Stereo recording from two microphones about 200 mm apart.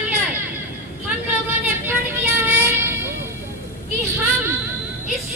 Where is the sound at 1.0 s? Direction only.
10° right (ahead or behind).